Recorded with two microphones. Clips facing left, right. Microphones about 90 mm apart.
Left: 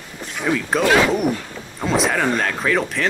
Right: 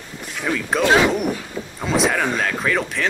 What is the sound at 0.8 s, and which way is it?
Speech, 20° right (ahead or behind).